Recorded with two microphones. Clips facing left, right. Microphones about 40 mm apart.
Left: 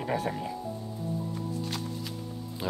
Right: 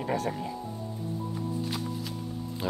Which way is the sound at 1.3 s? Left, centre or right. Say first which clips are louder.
Right 1 dB; centre.